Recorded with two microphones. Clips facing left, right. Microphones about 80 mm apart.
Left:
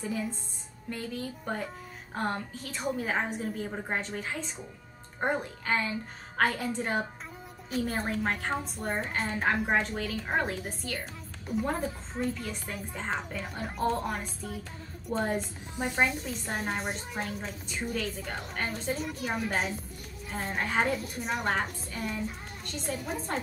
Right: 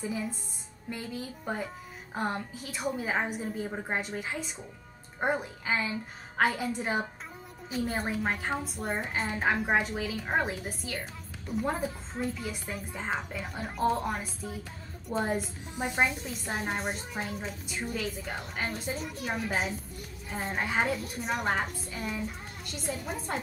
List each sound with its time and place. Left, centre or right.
0.0 s a woman's voice: centre
15.7 s speech: centre
16.0 s a child's voice: centre